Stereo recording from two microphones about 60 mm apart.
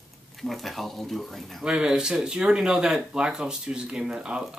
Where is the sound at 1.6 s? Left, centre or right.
Centre.